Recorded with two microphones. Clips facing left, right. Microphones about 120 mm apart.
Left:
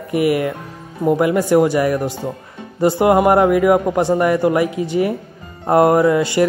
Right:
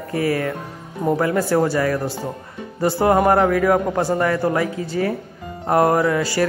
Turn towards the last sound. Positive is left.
turn(degrees=20)  # may be behind; listen again after turning